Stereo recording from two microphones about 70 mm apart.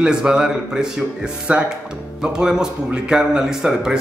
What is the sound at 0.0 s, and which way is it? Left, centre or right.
Speech, centre.